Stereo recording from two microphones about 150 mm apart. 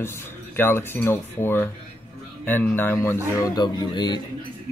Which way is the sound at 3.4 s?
25° left (ahead or behind).